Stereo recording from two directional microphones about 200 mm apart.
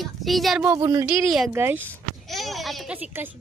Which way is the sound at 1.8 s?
5° left (ahead or behind).